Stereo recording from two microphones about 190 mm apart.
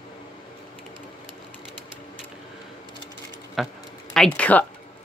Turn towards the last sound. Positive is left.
turn(degrees=5)  # may be behind; listen again after turning